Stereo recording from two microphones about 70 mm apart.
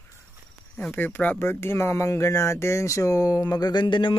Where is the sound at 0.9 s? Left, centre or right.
Left.